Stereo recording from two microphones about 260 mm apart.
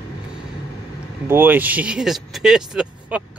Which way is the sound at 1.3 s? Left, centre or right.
Centre.